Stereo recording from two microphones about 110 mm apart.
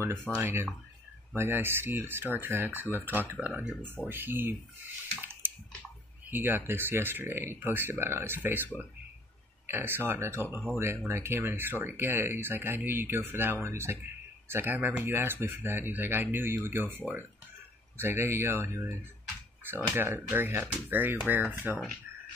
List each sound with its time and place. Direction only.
0.3 s speech: 20° right (ahead or behind)
5.2 s bathtub: 20° right (ahead or behind)
6.3 s speech: 20° right (ahead or behind)
9.7 s speech: 20° right (ahead or behind)